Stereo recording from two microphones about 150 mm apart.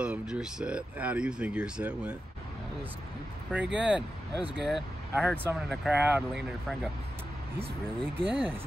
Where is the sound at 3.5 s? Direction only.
5° right (ahead or behind).